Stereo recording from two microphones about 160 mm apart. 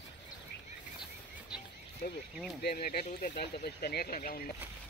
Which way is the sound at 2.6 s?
75° left (ahead or behind).